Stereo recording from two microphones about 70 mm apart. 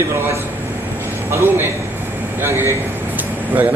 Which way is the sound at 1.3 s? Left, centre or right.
Right.